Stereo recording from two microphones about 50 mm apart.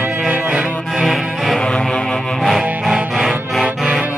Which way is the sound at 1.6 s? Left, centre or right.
Centre.